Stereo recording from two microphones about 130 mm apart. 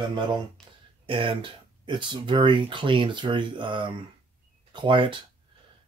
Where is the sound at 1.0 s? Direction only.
40° right (ahead or behind).